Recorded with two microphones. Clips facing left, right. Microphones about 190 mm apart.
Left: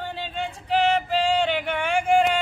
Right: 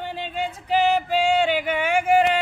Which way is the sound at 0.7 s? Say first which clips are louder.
Right 1 dB; 5° right (ahead or behind).